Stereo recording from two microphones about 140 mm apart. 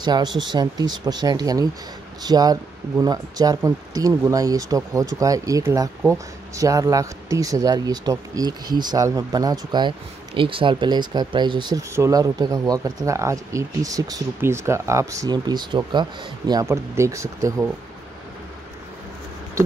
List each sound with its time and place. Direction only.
0.0 s speech: 30° right (ahead or behind)